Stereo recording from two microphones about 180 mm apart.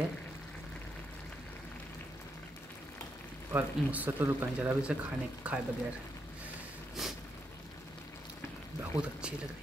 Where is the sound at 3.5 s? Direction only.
10° right (ahead or behind).